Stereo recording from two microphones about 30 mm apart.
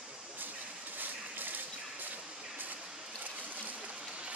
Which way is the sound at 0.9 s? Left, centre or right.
Right.